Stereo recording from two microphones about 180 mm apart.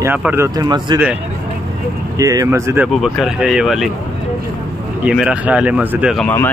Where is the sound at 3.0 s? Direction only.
Centre (ahead or behind).